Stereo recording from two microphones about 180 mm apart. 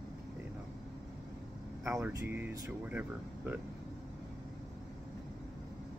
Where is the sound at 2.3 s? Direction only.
10° right (ahead or behind).